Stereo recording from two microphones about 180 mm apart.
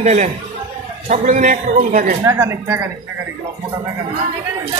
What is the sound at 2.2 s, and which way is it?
Speech, 15° right (ahead or behind).